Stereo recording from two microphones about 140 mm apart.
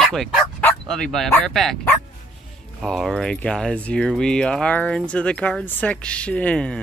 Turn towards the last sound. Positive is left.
turn(degrees=5)  # may be behind; listen again after turning